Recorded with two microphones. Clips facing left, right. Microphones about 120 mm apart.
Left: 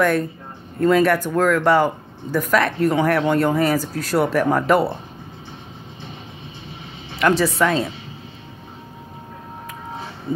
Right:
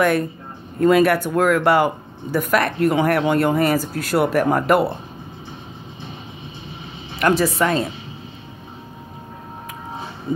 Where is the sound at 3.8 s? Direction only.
60° right (ahead or behind).